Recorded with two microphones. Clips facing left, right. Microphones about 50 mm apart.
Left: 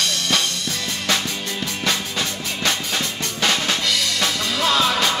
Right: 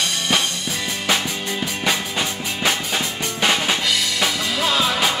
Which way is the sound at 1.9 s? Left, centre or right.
Centre.